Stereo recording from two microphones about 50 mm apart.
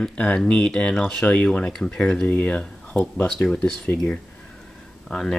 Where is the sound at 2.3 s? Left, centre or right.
Left.